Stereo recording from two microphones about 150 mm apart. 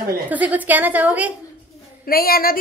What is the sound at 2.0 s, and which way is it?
Speech, 80° left.